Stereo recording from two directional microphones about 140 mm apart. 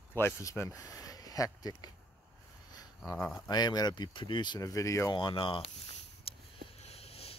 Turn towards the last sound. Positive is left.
turn(degrees=45)  # may be behind; listen again after turning